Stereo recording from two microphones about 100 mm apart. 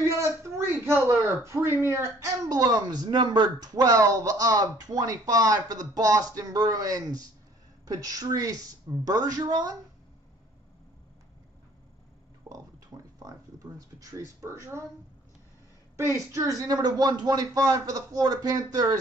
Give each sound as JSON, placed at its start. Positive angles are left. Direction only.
{"t": 0.4, "sound": "speech", "side_deg": -25}
{"t": 2.5, "sound": "speech", "side_deg": -40}
{"t": 12.4, "sound": "a sound", "side_deg": -35}
{"t": 16.0, "sound": "speech", "side_deg": -30}